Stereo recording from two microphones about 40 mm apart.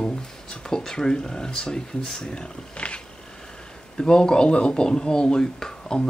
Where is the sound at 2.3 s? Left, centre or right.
Left.